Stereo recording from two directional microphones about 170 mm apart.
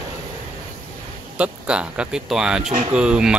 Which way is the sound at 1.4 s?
5° right (ahead or behind).